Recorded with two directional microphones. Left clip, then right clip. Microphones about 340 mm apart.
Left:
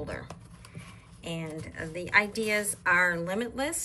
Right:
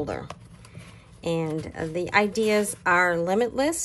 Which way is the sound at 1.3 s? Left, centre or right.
Centre.